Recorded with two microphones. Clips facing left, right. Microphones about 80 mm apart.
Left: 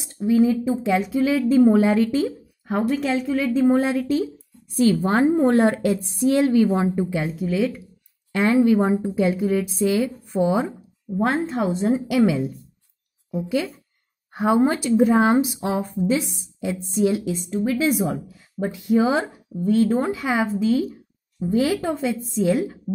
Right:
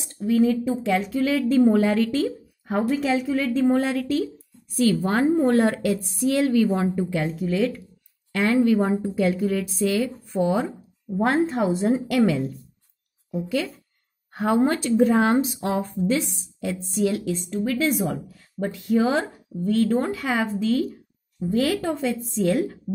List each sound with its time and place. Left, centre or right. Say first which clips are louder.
0.2 s speech: left 2 dB; centre
2.9 s a woman's voice: even; centre
3.4 s a woman's voice: left 4 dB; centre
7.0 s a woman's voice: left 1 dB; centre
11.1 s a woman's voice: right 1 dB; centre
12.1 s speech: left 2 dB; centre